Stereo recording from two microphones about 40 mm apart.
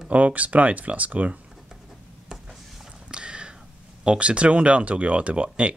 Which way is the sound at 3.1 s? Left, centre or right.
Right.